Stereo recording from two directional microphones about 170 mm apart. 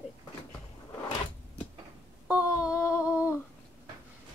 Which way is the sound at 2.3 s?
5° right (ahead or behind).